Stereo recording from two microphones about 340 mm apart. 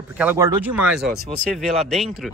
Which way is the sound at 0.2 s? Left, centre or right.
Centre.